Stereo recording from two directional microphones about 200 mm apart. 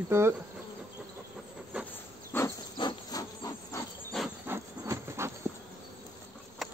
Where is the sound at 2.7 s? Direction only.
20° left (ahead or behind).